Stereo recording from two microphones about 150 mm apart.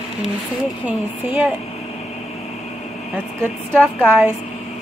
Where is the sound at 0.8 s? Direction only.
10° right (ahead or behind).